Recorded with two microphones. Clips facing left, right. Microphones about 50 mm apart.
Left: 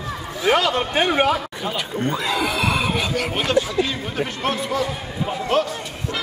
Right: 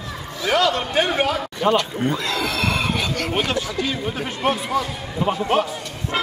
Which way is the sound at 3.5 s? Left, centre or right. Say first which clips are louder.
Left 6 dB; centre.